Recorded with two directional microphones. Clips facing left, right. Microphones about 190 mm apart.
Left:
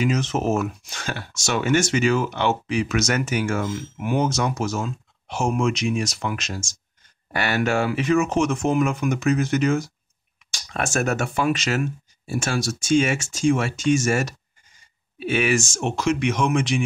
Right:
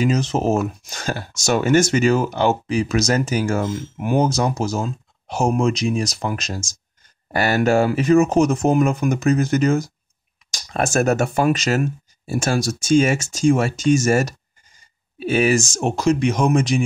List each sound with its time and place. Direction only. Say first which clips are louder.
0.0 s speech: right 3 dB; 35° right (ahead or behind)